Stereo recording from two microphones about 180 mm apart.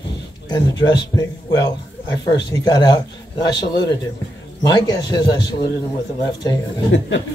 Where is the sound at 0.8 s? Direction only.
20° left (ahead or behind).